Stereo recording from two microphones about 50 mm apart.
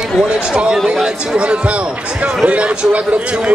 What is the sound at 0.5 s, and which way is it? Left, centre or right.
Speech, centre.